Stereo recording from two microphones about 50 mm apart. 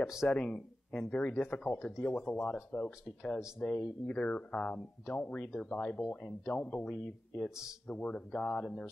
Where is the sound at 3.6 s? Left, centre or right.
Left.